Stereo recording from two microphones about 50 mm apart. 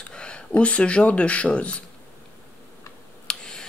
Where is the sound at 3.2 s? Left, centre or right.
Centre.